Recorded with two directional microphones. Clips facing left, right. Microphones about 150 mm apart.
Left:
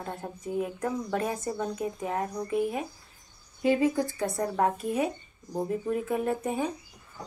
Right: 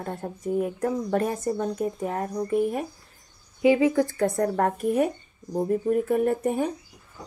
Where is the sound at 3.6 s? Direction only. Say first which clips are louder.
Right 5 dB; 90° right.